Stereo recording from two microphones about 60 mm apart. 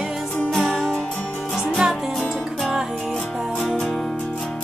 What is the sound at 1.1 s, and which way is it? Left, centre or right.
Music, left.